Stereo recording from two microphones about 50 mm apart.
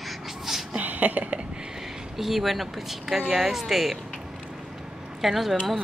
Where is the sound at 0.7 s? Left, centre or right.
Right.